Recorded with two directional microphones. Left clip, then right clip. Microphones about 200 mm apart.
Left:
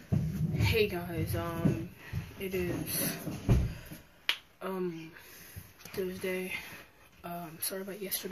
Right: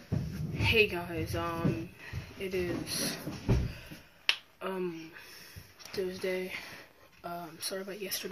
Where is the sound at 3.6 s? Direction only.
Centre (ahead or behind).